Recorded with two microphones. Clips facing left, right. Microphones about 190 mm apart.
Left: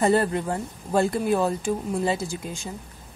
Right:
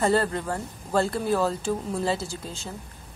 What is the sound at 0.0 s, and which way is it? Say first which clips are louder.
Speech: left 2 dB; 15° left (ahead or behind).